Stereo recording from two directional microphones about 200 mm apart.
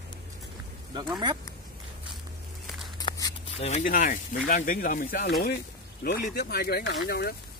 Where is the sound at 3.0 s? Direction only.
25° left (ahead or behind); by 7.4 s 50° left (ahead or behind).